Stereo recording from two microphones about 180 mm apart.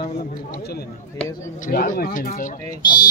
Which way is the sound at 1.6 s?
50° left (ahead or behind).